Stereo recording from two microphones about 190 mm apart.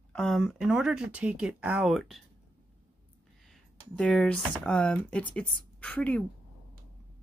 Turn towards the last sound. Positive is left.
turn(degrees=5)  # may be behind; listen again after turning